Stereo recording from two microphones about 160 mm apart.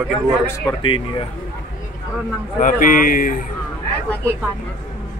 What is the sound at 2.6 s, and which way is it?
Speech, 55° left (ahead or behind).